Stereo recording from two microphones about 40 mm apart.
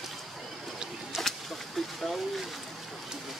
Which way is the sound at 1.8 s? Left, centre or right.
Centre.